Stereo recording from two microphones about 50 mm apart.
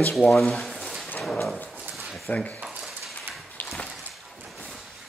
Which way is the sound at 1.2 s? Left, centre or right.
Centre.